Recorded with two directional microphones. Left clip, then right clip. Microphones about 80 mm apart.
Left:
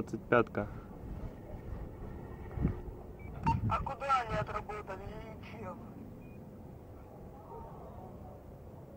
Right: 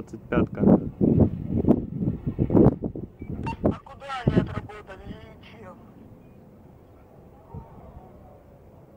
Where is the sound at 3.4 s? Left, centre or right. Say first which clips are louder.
Right 5 dB; right.